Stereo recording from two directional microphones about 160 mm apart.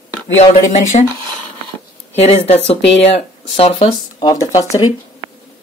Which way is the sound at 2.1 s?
40° left (ahead or behind).